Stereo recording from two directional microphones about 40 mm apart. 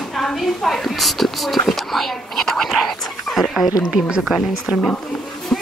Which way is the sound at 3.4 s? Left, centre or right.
Centre.